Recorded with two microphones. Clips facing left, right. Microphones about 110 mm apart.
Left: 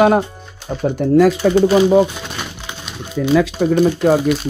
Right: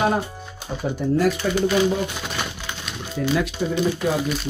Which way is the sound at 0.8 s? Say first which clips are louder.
Left 8 dB; 75° left (ahead or behind).